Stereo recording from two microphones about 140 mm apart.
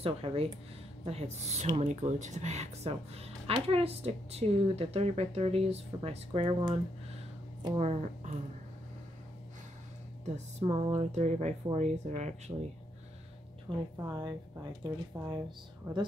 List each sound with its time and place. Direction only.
0.0 s speech: 45° right (ahead or behind)
6.4 s speech: 30° right (ahead or behind)
7.8 s speech: 50° right (ahead or behind)
10.2 s speech: 50° right (ahead or behind)
13.7 s speech: 20° right (ahead or behind)
14.0 s speech: 30° right (ahead or behind)